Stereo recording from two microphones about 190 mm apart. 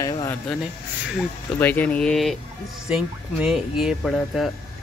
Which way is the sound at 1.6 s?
10° left (ahead or behind).